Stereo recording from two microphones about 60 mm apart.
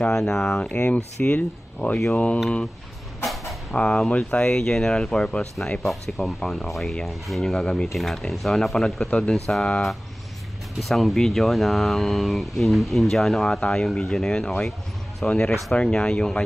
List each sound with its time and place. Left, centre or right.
0.1 s speech: centre
3.7 s speech: centre
7.5 s speech: centre
10.9 s speech: centre